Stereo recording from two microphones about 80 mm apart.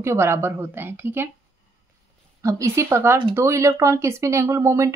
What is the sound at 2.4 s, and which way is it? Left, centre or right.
Speech, right.